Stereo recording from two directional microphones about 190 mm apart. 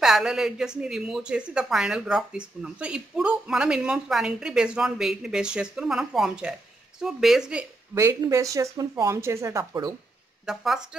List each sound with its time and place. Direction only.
0.0 s speech: 5° right (ahead or behind)
7.9 s speech: 15° right (ahead or behind)
10.4 s speech: centre (ahead or behind)